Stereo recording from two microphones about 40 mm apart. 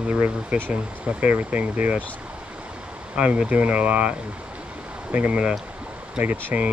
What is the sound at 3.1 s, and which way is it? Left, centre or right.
Speech, right.